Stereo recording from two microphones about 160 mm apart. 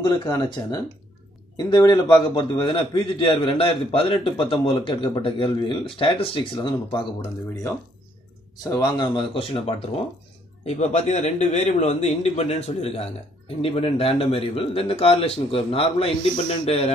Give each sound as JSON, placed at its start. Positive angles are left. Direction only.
{"t": 0.0, "sound": "a man's voice", "side_deg": 25}
{"t": 8.6, "sound": "a man's voice", "side_deg": 25}